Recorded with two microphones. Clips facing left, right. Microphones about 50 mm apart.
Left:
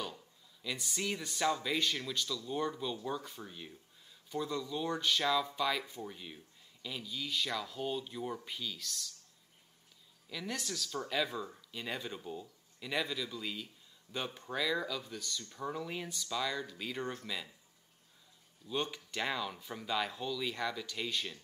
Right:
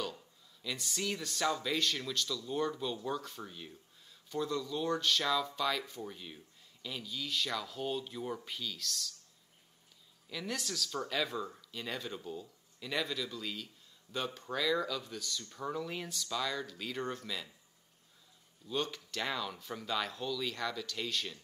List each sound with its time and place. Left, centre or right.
0.0 s a sound: centre
0.8 s speech: centre
8.5 s speech: centre
10.3 s speech: centre
18.8 s speech: left